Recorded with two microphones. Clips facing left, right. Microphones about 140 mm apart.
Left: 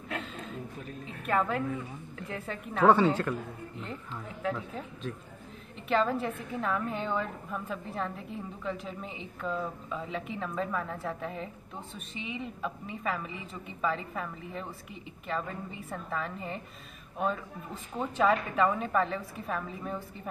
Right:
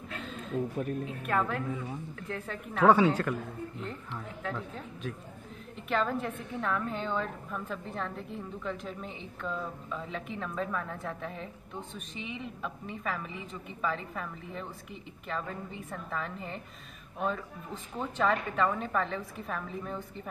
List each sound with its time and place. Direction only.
0.7 s speech: 55° right (ahead or behind)
1.0 s a woman's voice: centre (ahead or behind)
4.4 s a woman's voice: 5° left (ahead or behind)
5.9 s a woman's voice: centre (ahead or behind)